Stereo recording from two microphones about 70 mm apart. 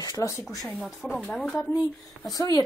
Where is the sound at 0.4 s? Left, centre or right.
Left.